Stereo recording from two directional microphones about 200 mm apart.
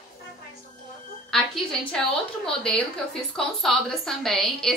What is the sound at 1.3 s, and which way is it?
A woman's voice, 5° left (ahead or behind).